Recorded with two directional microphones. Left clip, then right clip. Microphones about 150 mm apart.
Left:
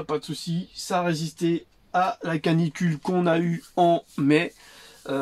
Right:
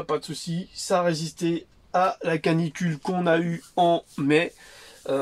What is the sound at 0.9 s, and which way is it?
Speech, centre (ahead or behind).